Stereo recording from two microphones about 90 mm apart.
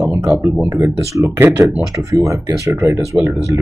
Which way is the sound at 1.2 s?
25° right (ahead or behind).